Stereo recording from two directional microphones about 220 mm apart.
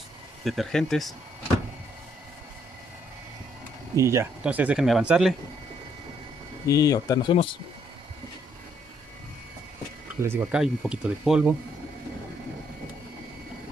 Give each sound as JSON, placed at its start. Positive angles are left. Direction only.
{"t": 0.4, "sound": "speech", "side_deg": 0}
{"t": 3.9, "sound": "speech", "side_deg": -15}
{"t": 6.7, "sound": "speech", "side_deg": 15}
{"t": 10.2, "sound": "speech", "side_deg": -5}